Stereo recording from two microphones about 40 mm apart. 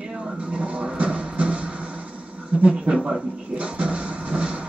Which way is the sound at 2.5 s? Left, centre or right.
Right.